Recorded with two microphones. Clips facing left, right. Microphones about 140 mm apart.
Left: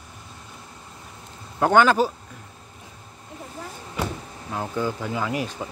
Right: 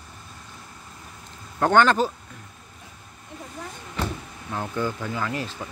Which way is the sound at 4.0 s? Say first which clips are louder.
Left 1 dB; 10° left (ahead or behind).